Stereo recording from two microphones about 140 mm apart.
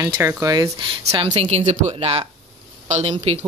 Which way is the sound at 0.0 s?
20° right (ahead or behind).